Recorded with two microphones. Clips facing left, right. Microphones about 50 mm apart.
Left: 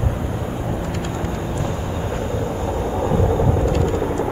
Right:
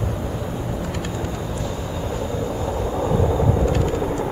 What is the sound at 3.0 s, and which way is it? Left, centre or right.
Vehicle, left.